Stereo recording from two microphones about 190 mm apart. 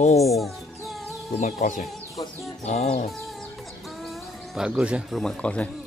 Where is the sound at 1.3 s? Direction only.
40° left (ahead or behind).